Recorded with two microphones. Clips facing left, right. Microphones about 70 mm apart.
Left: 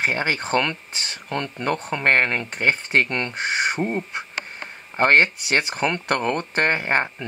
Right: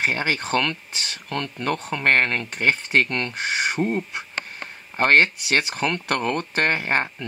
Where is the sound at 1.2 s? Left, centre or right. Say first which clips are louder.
Left 1 dB; centre.